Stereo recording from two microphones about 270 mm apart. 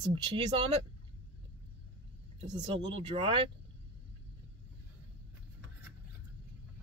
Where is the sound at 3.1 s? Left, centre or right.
Centre.